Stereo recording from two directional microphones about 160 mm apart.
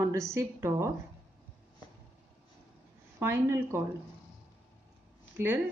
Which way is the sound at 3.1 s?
15° right (ahead or behind).